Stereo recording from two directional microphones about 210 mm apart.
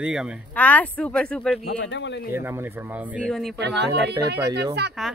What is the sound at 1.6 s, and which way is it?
Speech, 55° left (ahead or behind).